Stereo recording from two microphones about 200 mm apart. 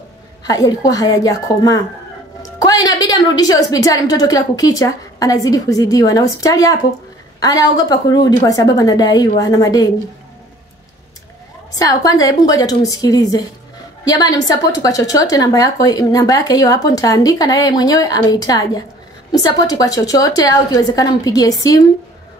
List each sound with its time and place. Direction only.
0.4 s a woman's voice: 20° left (ahead or behind)
11.7 s a woman's voice: 20° left (ahead or behind)